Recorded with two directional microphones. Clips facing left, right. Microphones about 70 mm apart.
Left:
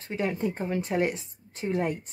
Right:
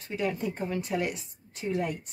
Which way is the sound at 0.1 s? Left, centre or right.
Left.